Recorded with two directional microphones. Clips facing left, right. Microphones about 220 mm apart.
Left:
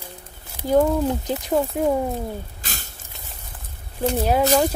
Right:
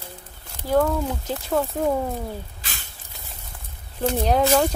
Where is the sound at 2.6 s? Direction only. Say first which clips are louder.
Left 4 dB; 45° left (ahead or behind).